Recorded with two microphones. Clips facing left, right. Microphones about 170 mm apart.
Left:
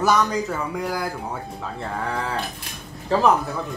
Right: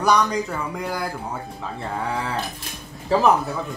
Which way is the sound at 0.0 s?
Centre (ahead or behind).